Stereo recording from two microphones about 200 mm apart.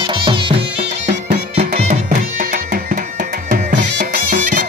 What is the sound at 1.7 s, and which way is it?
Music, 40° right (ahead or behind).